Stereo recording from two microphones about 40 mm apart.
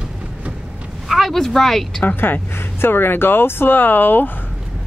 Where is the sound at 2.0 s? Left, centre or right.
Left.